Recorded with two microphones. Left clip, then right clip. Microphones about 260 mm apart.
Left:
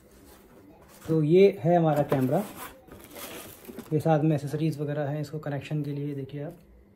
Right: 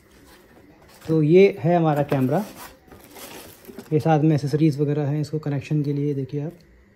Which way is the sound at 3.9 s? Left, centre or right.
Right.